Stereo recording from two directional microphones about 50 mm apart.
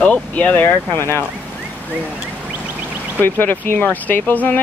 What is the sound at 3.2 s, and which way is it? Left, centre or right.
Speech, left.